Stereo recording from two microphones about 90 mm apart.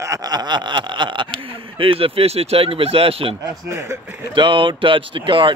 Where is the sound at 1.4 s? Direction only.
90° right.